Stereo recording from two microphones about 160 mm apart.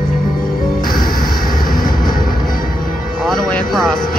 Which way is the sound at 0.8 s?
65° left (ahead or behind).